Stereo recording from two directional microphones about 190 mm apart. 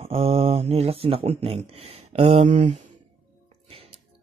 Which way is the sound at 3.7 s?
30° right (ahead or behind).